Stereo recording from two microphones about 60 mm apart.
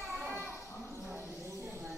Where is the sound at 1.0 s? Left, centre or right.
Right.